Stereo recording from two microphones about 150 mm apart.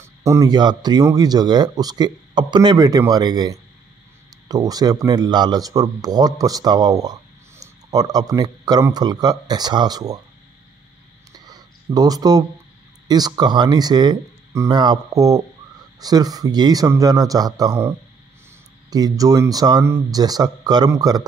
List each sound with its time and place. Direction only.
0.0 s speech: 20° right (ahead or behind)
11.3 s a sound: 25° right (ahead or behind)
13.1 s speech: 25° right (ahead or behind)